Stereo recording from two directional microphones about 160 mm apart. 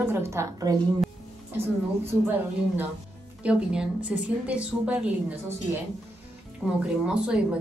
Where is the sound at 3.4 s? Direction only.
5° right (ahead or behind).